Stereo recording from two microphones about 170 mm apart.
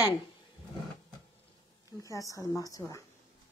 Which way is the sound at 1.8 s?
20° left (ahead or behind).